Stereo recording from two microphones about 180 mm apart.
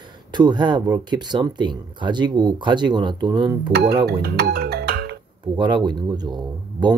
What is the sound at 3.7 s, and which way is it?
Speech, 65° right (ahead or behind).